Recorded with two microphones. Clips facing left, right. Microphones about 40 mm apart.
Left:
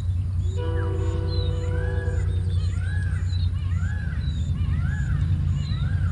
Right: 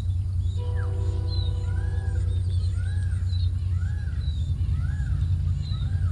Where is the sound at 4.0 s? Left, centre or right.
Left.